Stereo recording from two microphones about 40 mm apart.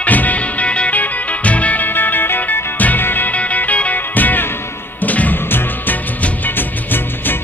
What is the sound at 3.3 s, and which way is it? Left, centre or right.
Music, left.